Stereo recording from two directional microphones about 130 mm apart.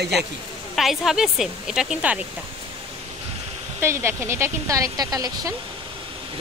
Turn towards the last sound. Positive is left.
turn(degrees=-30)  # may be behind; listen again after turning